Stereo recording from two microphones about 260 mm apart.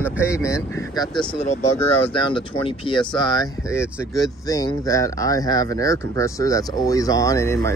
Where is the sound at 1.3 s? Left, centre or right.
Left.